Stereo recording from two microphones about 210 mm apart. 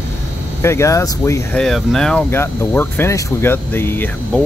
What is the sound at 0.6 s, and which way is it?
Speech, 15° left (ahead or behind).